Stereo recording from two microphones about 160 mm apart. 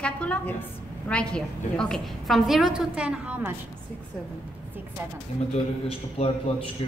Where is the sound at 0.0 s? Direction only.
10° left (ahead or behind); by 3.5 s 10° right (ahead or behind).